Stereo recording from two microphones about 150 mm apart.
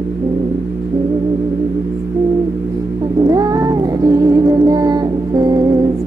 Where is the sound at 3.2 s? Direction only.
25° right (ahead or behind).